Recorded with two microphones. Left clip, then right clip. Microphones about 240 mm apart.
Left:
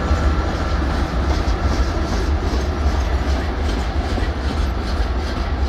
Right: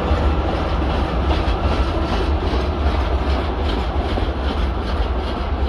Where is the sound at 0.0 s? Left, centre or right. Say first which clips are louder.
Right 2 dB; right.